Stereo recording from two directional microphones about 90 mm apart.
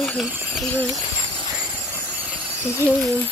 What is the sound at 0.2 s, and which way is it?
Speech, 10° left (ahead or behind).